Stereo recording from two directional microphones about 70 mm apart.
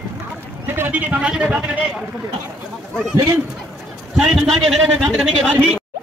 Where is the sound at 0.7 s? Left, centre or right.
Right.